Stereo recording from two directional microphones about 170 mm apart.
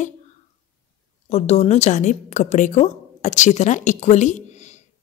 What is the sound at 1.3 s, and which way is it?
Speech, 40° left (ahead or behind).